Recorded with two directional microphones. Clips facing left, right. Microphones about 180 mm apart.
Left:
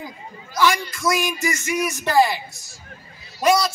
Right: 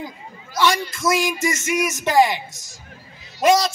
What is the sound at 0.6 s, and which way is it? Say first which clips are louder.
A man's voice: even; 25° right (ahead or behind).